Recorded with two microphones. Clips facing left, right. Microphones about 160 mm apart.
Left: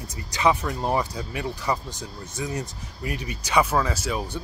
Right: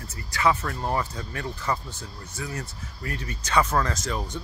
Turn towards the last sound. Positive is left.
turn(degrees=10)  # may be behind; listen again after turning